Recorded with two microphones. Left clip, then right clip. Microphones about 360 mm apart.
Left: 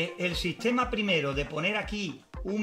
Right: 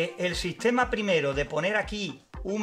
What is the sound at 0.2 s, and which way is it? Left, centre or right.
A man's voice, right.